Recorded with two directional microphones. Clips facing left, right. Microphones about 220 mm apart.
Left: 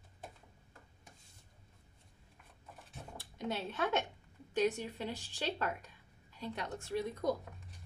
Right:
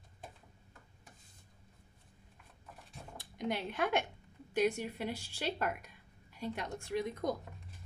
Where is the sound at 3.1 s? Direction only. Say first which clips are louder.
Right 2 dB; 15° right (ahead or behind).